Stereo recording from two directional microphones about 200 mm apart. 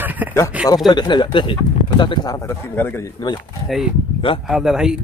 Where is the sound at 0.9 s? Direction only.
20° left (ahead or behind).